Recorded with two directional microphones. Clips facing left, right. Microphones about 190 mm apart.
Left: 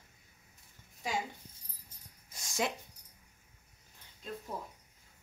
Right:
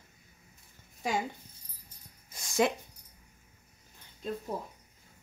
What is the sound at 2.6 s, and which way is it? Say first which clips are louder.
Speech: right 7 dB; 65° right (ahead or behind).